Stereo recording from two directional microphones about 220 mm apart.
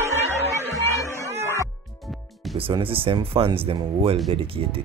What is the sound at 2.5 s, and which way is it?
Speech, 25° right (ahead or behind).